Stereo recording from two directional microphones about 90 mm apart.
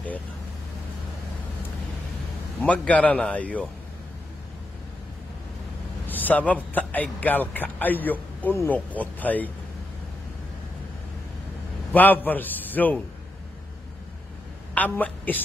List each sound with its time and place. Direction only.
2.6 s a man's voice: 15° left (ahead or behind)
6.0 s a man's voice: 20° left (ahead or behind)
11.9 s a man's voice: 20° left (ahead or behind)
14.7 s a woman's voice: 15° left (ahead or behind)